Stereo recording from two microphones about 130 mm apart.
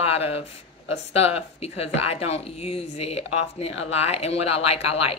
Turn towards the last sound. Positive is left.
turn(degrees=50)  # may be behind; listen again after turning